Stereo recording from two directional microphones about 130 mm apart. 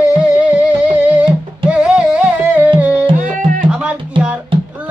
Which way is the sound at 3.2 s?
80° right.